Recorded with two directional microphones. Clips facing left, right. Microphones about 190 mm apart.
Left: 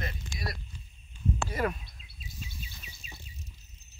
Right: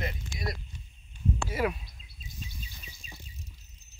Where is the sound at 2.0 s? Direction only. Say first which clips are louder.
Left 1 dB; 35° right (ahead or behind).